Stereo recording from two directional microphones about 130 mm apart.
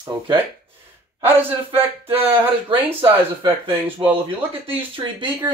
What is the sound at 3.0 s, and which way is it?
Speech, 40° right (ahead or behind).